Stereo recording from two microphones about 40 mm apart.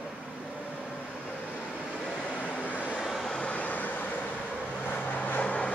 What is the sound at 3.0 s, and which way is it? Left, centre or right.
Vehicle, centre.